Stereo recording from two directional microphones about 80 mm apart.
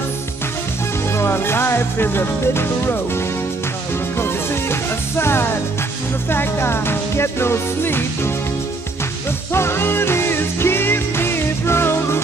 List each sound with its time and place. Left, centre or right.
1.1 s music: left
4.2 s music: left
9.5 s music: left